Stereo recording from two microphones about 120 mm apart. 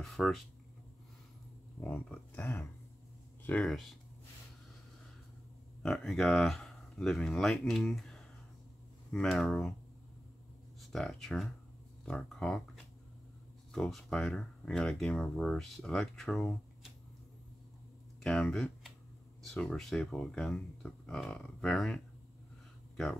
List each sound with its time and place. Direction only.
0.0 s a sound: centre (ahead or behind)
1.8 s speech: 10° left (ahead or behind)
2.4 s speech: 20° left (ahead or behind)
3.4 s speech: 5° left (ahead or behind)
5.8 s speech: 5° left (ahead or behind)
10.8 s speech: centre (ahead or behind)
18.2 s speech: 5° left (ahead or behind)